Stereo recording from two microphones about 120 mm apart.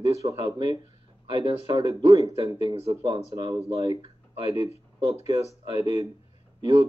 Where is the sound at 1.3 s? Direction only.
40° right (ahead or behind).